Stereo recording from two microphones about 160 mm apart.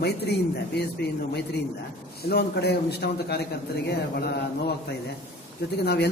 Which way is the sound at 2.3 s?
90° left.